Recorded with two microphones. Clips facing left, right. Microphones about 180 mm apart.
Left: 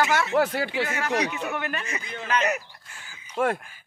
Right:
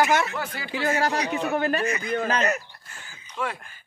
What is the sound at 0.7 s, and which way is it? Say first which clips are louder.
Speech: right 2 dB; 35° right (ahead or behind).